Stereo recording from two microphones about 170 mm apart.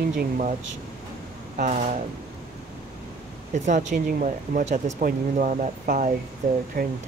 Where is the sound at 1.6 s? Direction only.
45° right (ahead or behind).